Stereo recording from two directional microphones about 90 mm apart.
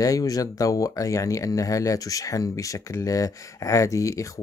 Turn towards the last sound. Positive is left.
turn(degrees=35)  # may be behind; listen again after turning